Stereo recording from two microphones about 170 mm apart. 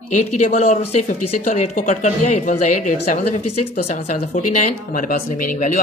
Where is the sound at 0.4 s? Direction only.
45° left (ahead or behind).